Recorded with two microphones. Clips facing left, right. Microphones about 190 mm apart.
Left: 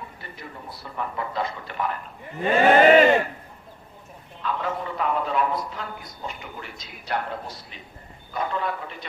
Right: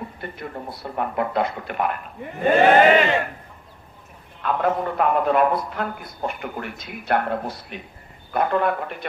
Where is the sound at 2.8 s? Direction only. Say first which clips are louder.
Left 2 dB; 45° left (ahead or behind).